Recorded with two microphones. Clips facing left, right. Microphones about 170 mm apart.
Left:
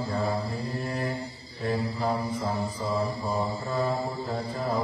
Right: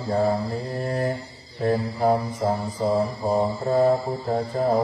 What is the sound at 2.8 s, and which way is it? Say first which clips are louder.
Mantra: right 9 dB; 60° right (ahead or behind).